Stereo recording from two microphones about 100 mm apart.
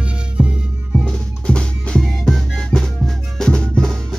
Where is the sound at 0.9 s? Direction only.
10° left (ahead or behind).